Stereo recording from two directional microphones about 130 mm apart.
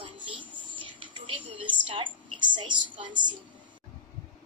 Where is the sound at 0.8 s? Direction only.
40° right (ahead or behind).